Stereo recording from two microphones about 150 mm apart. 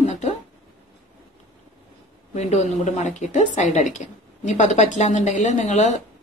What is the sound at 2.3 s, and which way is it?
A woman's voice, 50° left (ahead or behind).